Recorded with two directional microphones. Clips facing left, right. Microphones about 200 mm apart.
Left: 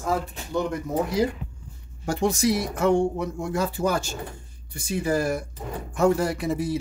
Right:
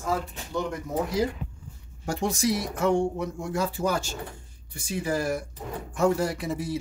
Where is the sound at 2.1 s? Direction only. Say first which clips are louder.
Left 3 dB; 65° left (ahead or behind).